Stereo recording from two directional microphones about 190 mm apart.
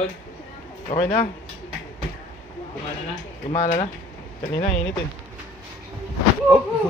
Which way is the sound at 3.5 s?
40° left (ahead or behind).